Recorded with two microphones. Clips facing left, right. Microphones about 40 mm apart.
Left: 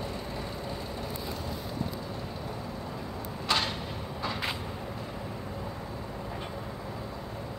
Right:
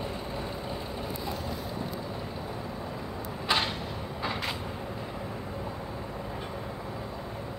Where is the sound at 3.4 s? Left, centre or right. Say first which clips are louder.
Right 1 dB; centre.